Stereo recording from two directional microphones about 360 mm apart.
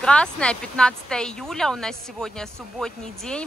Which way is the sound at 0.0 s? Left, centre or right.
Centre.